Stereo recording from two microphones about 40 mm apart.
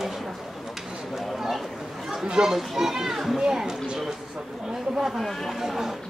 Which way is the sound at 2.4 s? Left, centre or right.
Centre.